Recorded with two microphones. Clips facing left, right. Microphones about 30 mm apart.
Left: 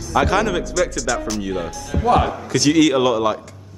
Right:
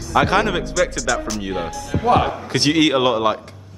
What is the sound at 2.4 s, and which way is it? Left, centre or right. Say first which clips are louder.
Speech: left 1 dB; right.